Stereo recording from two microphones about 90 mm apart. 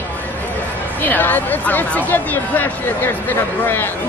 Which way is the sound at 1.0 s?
20° left (ahead or behind).